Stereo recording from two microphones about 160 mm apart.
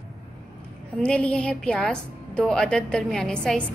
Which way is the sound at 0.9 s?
5° left (ahead or behind).